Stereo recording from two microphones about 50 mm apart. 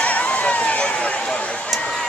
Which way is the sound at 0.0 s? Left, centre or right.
Left.